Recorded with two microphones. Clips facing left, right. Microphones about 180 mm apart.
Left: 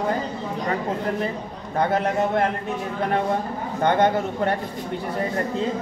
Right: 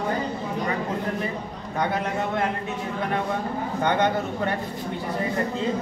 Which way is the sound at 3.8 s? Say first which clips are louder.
Left 4 dB; 45° left (ahead or behind).